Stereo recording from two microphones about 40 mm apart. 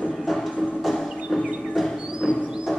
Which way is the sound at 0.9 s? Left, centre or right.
Centre.